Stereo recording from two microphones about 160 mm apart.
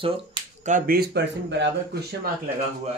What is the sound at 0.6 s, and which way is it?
Speech, 60° right (ahead or behind).